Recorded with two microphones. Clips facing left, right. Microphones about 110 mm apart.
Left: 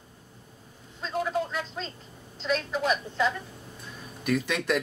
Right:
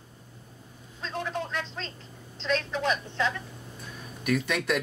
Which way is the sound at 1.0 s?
5° left (ahead or behind).